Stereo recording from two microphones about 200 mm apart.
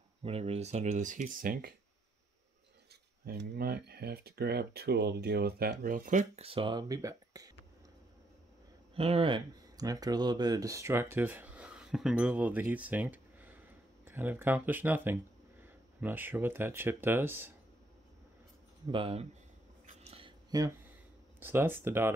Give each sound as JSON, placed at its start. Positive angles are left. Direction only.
{"t": 0.2, "sound": "speech", "side_deg": -30}
{"t": 2.9, "sound": "speech", "side_deg": -55}
{"t": 8.9, "sound": "speech", "side_deg": -30}
{"t": 18.9, "sound": "speech", "side_deg": -25}
{"t": 19.9, "sound": "a sound", "side_deg": -30}
{"t": 21.4, "sound": "speech", "side_deg": -10}